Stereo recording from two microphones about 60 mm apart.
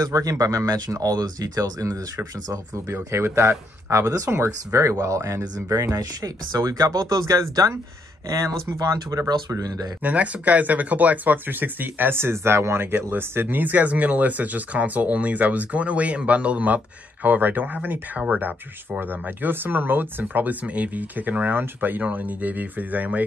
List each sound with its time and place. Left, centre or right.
0.0 s speech: right
2.9 s speech: right
4.0 s speech: right
4.3 s speech: right
4.9 s speech: right
5.9 s speech: right
8.3 s speech: right
10.0 s speech: right